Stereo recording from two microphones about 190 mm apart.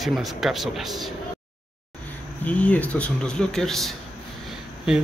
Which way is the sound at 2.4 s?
5° left (ahead or behind).